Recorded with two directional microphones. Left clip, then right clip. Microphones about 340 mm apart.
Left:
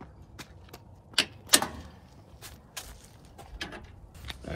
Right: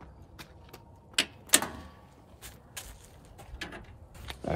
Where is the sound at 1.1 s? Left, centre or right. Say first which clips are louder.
Left 2 dB; centre.